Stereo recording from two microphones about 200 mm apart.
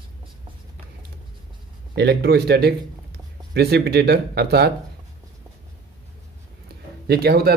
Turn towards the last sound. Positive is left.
turn(degrees=-50)  # may be behind; listen again after turning